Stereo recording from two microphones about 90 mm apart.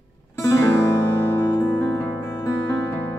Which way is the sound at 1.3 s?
20° left (ahead or behind).